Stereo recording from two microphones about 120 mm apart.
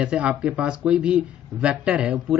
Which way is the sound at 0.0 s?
10° right (ahead or behind).